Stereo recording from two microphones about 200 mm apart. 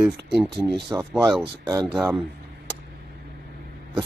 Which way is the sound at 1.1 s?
5° right (ahead or behind).